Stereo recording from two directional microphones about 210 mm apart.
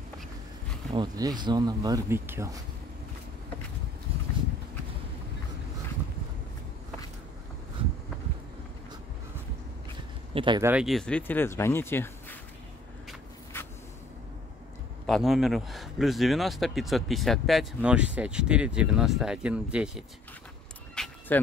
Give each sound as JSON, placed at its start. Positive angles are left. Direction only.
{"t": 0.9, "sound": "speech", "side_deg": -20}
{"t": 10.3, "sound": "speech", "side_deg": -25}
{"t": 10.6, "sound": "speech", "side_deg": -5}
{"t": 15.0, "sound": "speech", "side_deg": 0}
{"t": 20.9, "sound": "vehicle", "side_deg": 5}